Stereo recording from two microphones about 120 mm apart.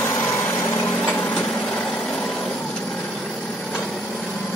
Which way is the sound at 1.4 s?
5° left (ahead or behind).